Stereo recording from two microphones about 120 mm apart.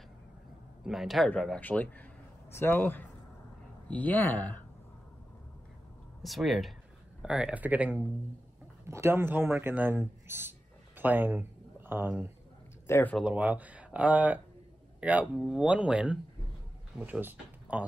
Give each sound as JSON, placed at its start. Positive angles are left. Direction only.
{"t": 0.8, "sound": "a man's voice", "side_deg": 0}
{"t": 1.6, "sound": "speech", "side_deg": 15}
{"t": 6.2, "sound": "a man's voice", "side_deg": 0}
{"t": 12.8, "sound": "speech", "side_deg": 20}
{"t": 13.2, "sound": "speech", "side_deg": -10}